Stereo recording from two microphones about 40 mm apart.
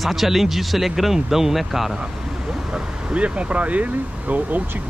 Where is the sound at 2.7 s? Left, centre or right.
Right.